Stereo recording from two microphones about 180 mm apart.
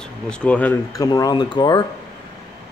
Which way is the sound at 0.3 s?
5° left (ahead or behind).